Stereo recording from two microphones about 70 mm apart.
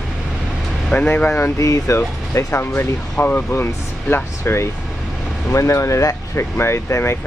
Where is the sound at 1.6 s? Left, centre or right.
Left.